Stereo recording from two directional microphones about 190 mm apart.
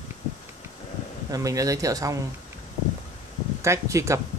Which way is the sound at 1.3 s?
20° right (ahead or behind).